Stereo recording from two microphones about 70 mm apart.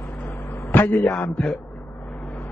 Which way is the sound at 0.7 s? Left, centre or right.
Left.